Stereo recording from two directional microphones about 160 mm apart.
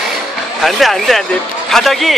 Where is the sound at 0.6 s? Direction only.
Centre (ahead or behind).